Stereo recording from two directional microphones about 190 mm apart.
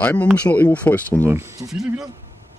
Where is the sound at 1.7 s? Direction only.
Centre (ahead or behind).